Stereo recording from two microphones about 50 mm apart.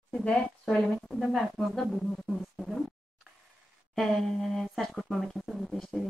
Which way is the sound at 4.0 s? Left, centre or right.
Centre.